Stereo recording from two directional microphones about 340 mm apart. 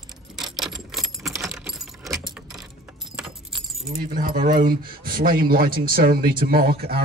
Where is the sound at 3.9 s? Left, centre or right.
Right.